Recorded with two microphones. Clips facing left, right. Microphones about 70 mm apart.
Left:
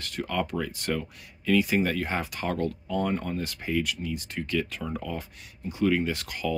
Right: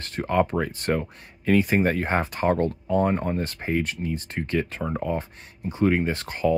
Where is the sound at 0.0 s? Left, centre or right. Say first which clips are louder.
Right 7 dB; right.